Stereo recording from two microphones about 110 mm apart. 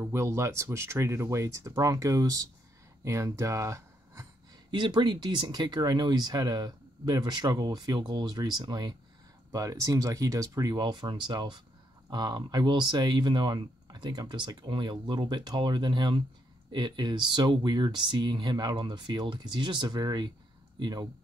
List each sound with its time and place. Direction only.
0.0 s speech: 25° right (ahead or behind)
4.6 s speech: 45° right (ahead or behind)